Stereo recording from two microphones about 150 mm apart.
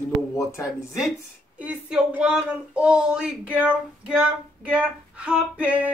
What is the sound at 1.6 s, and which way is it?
Speech, 10° right (ahead or behind).